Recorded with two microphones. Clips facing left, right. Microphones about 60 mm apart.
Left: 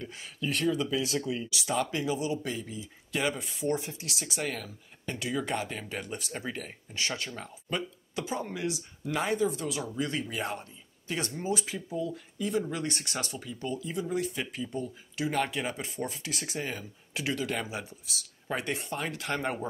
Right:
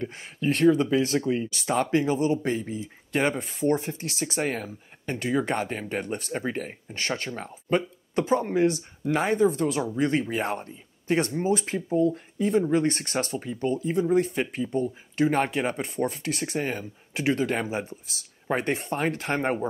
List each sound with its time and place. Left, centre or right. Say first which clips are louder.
0.0 s speech: right 7 dB; right